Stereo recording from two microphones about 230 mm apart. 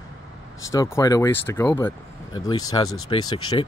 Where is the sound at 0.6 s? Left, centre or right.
Centre.